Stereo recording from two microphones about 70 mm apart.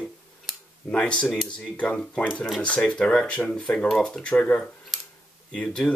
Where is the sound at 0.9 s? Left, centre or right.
Centre.